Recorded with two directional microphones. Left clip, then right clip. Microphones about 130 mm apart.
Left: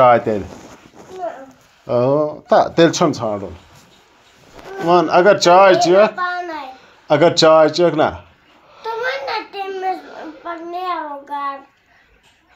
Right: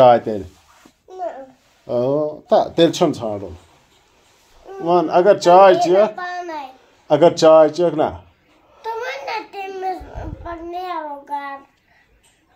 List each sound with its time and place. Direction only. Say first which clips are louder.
0.0 s speech: even; 5° right (ahead or behind)
1.9 s speech: left 3 dB; 10° left (ahead or behind)
4.8 s speech: left 2 dB; 15° left (ahead or behind)
6.1 s a sound: left 5 dB; 10° right (ahead or behind)
7.1 s speech: even; 15° left (ahead or behind)
9.2 s child singing: left 3 dB; 10° right (ahead or behind)